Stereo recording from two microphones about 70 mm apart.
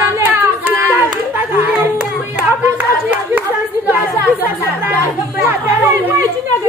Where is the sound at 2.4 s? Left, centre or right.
Right.